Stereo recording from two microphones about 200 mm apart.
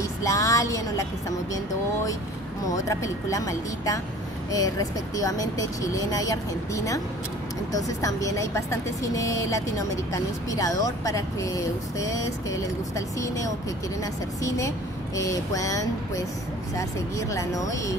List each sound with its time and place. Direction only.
0.2 s a sound: 15° left (ahead or behind)
2.7 s speech: 15° left (ahead or behind)
15.1 s speech: 15° left (ahead or behind)